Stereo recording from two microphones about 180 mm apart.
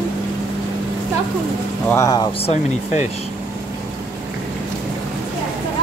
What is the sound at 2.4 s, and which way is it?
Speech, 40° left (ahead or behind).